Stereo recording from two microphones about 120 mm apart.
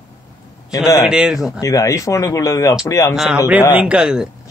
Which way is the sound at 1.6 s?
25° left (ahead or behind).